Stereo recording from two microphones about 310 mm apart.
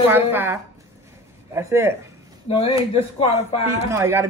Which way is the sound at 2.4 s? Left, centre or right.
Centre.